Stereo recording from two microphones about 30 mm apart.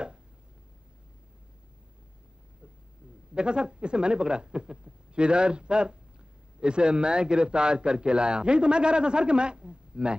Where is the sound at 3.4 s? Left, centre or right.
Right.